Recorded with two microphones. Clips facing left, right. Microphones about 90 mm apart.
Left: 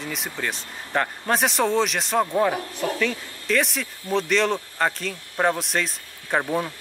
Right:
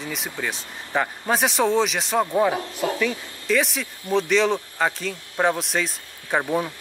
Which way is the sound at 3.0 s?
5° right (ahead or behind).